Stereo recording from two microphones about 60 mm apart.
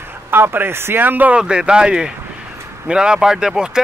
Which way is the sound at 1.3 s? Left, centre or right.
Centre.